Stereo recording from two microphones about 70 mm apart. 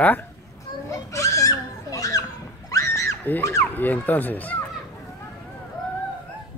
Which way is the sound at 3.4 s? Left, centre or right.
Left.